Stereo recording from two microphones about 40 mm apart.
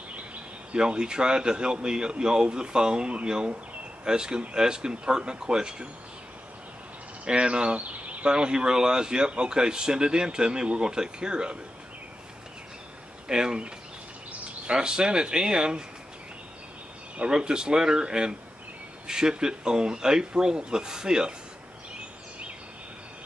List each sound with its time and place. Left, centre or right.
0.7 s speech: right
7.2 s speech: right
7.8 s a sound: right
8.3 s speech: right
13.3 s speech: right
14.7 s speech: right
17.2 s speech: right